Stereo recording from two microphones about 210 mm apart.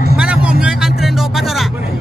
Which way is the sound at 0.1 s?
5° right (ahead or behind).